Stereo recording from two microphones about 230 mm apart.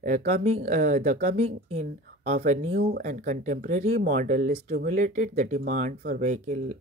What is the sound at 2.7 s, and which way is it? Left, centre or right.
Speech, right.